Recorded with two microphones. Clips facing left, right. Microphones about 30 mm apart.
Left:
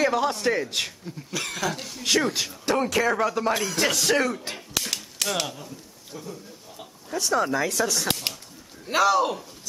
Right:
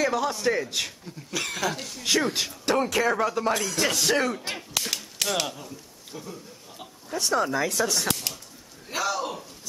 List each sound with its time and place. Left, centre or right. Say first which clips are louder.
0.0 s speech: left 2 dB; centre
2.2 s speech: even; centre
4.0 s speech: left 1 dB; centre
4.7 s typewriter: left 1 dB; centre
6.1 s speech: left 1 dB; centre
6.8 s a sound: left 1 dB; centre
7.4 s speech: left 1 dB; centre
9.0 s speech: left 8 dB; left